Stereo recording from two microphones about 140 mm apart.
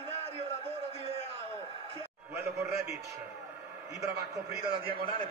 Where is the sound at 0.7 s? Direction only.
45° right (ahead or behind).